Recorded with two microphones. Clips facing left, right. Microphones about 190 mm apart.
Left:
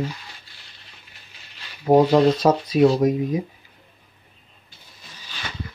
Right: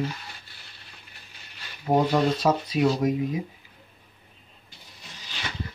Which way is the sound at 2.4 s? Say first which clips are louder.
Left 6 dB; 40° left (ahead or behind).